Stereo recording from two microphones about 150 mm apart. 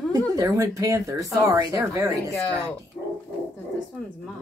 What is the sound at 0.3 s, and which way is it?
Speech, 20° right (ahead or behind).